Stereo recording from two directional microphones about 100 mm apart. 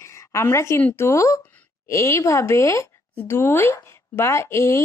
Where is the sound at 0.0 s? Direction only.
30° left (ahead or behind).